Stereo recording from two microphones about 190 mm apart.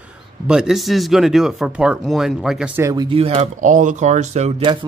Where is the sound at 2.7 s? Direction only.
20° right (ahead or behind); by 4.5 s 35° right (ahead or behind).